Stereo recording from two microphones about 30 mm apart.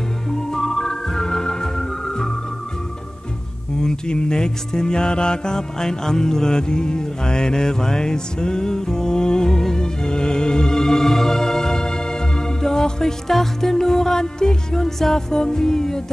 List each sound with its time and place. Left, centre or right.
0.3 s music: centre
3.8 s music: left